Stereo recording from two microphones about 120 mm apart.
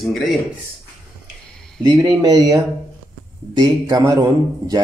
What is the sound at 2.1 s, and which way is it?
Speech, 35° right (ahead or behind).